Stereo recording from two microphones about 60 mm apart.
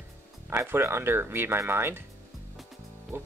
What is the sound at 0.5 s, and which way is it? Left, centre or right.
Speech, right.